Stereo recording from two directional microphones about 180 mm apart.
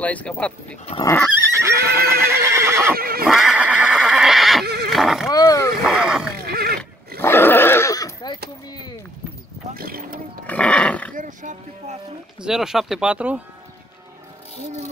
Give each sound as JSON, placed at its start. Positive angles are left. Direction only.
{"t": 0.0, "sound": "speech", "side_deg": 10}
{"t": 1.5, "sound": "neigh", "side_deg": -15}
{"t": 3.0, "sound": "neigh", "side_deg": -55}
{"t": 3.3, "sound": "neigh", "side_deg": 0}
{"t": 5.3, "sound": "roaring cats", "side_deg": 20}
{"t": 5.8, "sound": "roaring cats", "side_deg": -5}
{"t": 6.3, "sound": "a sound", "side_deg": -60}
{"t": 7.2, "sound": "a sound", "side_deg": 15}
{"t": 9.8, "sound": "boat", "side_deg": -55}
{"t": 10.4, "sound": "dog", "side_deg": 5}
{"t": 11.1, "sound": "speech", "side_deg": -45}
{"t": 12.4, "sound": "speech", "side_deg": -5}